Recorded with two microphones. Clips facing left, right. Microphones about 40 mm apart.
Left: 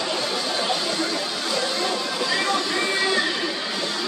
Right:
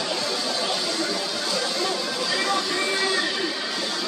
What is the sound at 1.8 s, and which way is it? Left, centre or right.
Chatter, centre.